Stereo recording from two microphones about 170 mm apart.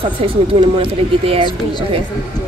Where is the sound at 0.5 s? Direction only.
30° right (ahead or behind).